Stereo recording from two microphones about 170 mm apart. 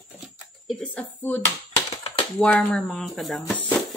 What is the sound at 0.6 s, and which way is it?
Speech, 5° left (ahead or behind).